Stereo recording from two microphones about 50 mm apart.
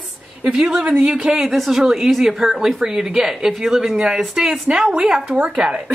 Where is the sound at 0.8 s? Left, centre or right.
Right.